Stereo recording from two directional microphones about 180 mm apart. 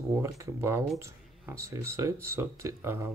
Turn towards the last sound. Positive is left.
turn(degrees=-15)  # may be behind; listen again after turning